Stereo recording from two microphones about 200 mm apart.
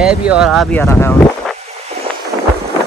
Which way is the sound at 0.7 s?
10° left (ahead or behind).